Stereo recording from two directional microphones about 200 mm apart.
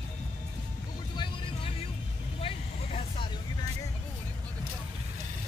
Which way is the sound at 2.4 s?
30° left (ahead or behind).